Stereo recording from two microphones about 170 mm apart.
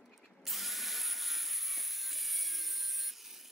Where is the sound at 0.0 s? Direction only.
Centre (ahead or behind).